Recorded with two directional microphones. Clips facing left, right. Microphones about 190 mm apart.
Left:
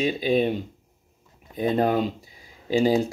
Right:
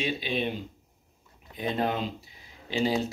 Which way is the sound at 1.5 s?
40° left (ahead or behind).